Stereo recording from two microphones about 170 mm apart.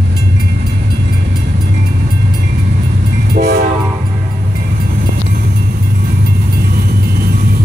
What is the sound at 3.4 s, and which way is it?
Train, 70° right (ahead or behind).